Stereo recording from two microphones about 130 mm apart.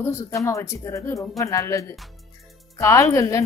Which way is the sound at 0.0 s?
20° left (ahead or behind).